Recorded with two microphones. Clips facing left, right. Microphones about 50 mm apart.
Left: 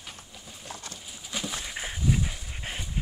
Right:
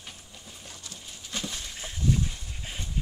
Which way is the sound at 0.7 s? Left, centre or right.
Left.